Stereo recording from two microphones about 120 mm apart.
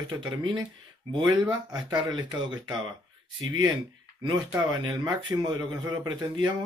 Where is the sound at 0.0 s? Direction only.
40° right (ahead or behind).